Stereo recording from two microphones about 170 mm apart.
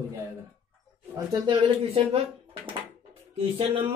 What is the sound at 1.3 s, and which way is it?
Speech, 30° right (ahead or behind).